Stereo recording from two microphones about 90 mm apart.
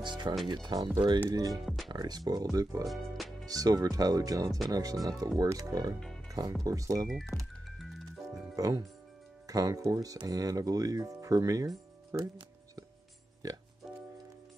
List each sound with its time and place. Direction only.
0.0 s speech: 55° right (ahead or behind)
1.5 s speech: centre (ahead or behind)
1.9 s speech: 50° right (ahead or behind)
2.9 s speech: centre (ahead or behind)
3.4 s speech: 45° right (ahead or behind)
7.1 s music: centre (ahead or behind)
8.3 s music: 40° right (ahead or behind)
9.5 s speech: 45° right (ahead or behind)
13.4 s speech: 40° right (ahead or behind)
13.8 s music: 5° right (ahead or behind)